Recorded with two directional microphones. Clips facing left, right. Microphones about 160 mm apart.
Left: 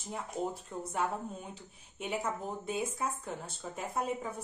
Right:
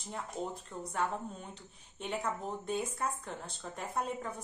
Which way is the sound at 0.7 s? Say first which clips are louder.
Right 2 dB; 10° left (ahead or behind).